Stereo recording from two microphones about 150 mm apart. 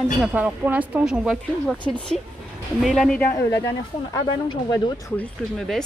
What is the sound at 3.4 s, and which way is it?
Speech, 20° left (ahead or behind).